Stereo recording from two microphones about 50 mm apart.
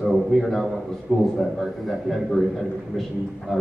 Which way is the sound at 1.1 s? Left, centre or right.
Centre.